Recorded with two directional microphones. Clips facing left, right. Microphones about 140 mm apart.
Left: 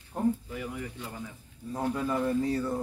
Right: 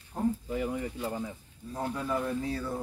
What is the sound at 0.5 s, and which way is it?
Speech, 30° right (ahead or behind).